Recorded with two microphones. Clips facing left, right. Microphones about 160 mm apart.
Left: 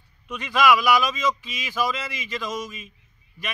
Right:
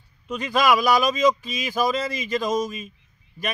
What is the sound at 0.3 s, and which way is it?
A man's voice, 40° right (ahead or behind).